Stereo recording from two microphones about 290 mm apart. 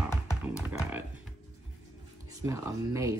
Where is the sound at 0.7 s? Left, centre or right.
Centre.